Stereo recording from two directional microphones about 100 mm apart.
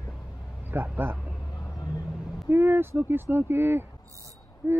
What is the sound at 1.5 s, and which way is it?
Vehicle, 40° left (ahead or behind).